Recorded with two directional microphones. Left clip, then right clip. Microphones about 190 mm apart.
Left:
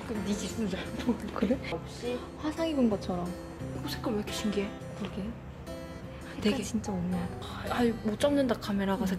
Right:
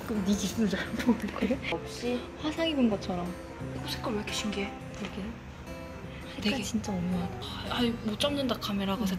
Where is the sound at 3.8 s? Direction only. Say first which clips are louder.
Even; 50° left (ahead or behind).